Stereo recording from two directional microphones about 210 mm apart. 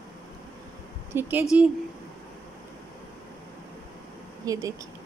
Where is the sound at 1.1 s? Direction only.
10° right (ahead or behind).